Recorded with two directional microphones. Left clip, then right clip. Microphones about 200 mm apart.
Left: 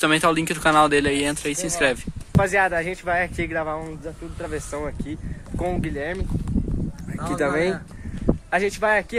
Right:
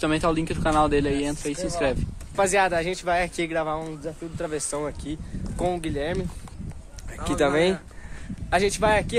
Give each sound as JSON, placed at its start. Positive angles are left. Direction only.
{"t": 0.0, "sound": "speech", "side_deg": 0}
{"t": 2.3, "sound": "speech", "side_deg": -10}